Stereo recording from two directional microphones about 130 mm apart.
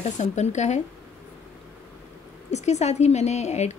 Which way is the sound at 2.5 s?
60° left (ahead or behind).